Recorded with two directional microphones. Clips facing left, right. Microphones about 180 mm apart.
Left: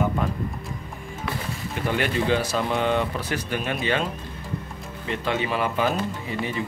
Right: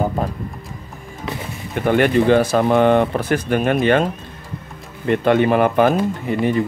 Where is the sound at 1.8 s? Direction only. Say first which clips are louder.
Right 10 dB; 55° right (ahead or behind).